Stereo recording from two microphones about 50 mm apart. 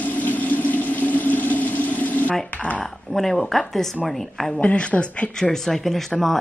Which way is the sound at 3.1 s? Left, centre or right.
Centre.